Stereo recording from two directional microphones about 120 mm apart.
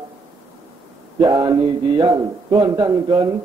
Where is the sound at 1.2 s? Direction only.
35° right (ahead or behind).